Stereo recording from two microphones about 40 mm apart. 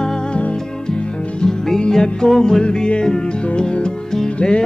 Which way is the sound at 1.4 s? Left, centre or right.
Centre.